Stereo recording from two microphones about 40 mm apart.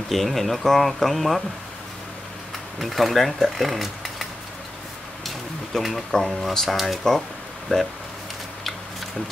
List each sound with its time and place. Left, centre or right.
0.1 s speech: centre
2.8 s speech: centre
5.2 s a sound: centre
6.5 s speech: centre